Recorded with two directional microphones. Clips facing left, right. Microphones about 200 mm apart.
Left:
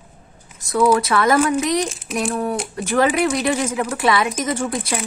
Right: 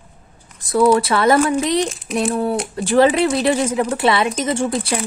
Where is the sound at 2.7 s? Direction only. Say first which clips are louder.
Right 4 dB; 30° right (ahead or behind).